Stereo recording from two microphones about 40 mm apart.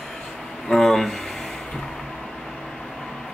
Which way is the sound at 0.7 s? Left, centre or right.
Centre.